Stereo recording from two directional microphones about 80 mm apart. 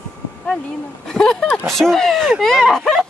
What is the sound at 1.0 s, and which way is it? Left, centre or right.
Speech, centre.